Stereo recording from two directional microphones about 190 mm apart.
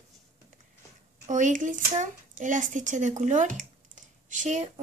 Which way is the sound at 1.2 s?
40° right (ahead or behind).